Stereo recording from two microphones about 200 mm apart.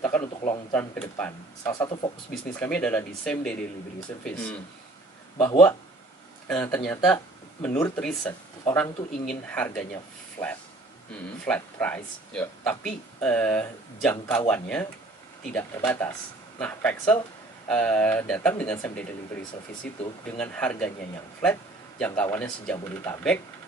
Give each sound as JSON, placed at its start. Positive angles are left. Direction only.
{"t": 0.0, "sound": "speech", "side_deg": 10}
{"t": 2.6, "sound": "speech", "side_deg": 5}
{"t": 10.4, "sound": "speech", "side_deg": 20}
{"t": 11.4, "sound": "speech", "side_deg": 5}